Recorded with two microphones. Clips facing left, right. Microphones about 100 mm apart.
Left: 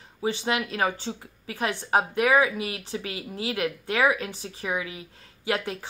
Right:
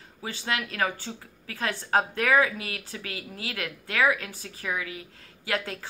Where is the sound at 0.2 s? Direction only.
20° left (ahead or behind).